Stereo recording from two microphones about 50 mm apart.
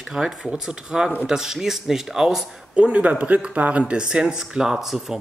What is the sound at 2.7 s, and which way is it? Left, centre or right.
Speech, right.